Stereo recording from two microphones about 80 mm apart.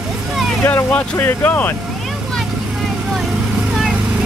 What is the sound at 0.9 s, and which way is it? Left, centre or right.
Speech, left.